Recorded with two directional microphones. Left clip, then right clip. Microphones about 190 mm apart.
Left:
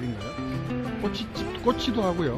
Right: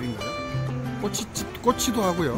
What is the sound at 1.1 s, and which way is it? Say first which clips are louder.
Speech: even; 25° right (ahead or behind).